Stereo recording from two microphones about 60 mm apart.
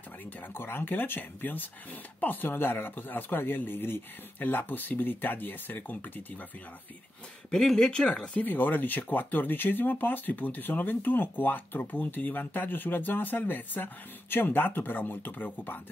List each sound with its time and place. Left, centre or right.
0.4 s speech: left
7.5 s speech: centre
8.5 s speech: left